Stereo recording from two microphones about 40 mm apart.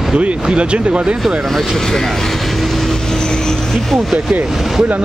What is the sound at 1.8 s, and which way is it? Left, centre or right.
Vehicle, centre.